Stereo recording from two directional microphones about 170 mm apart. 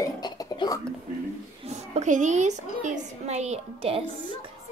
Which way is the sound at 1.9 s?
45° right (ahead or behind).